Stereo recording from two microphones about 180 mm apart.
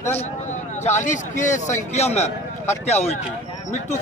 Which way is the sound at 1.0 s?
45° left (ahead or behind).